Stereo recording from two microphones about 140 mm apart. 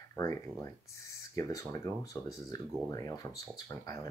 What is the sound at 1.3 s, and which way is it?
Speech, 25° left (ahead or behind).